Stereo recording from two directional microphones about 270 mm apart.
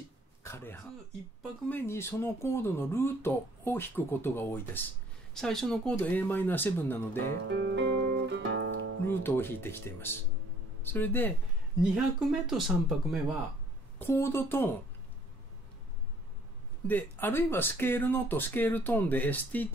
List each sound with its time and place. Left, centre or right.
0.4 s speech: centre
7.4 s music: right
9.2 s speech: centre
13.9 s speech: centre
16.8 s speech: centre